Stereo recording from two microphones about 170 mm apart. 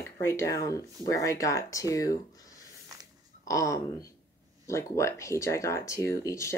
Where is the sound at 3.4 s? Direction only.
20° left (ahead or behind).